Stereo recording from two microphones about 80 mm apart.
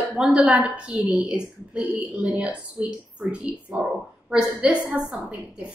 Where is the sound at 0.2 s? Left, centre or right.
Centre.